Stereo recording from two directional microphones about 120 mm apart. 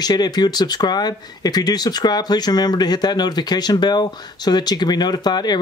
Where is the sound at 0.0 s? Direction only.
35° left (ahead or behind).